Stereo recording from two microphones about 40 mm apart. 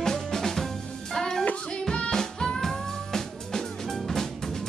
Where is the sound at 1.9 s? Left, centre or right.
Left.